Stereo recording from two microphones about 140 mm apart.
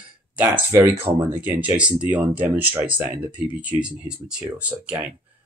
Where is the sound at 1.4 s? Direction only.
10° right (ahead or behind).